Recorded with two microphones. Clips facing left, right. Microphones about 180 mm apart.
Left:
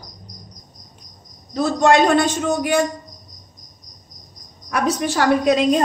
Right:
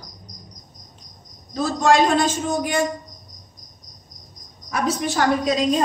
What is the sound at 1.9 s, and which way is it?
Speech, 65° left (ahead or behind).